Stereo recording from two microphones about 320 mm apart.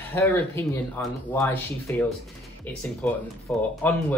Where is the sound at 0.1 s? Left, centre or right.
Centre.